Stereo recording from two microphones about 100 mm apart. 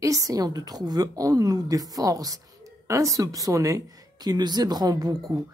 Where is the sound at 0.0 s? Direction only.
35° right (ahead or behind).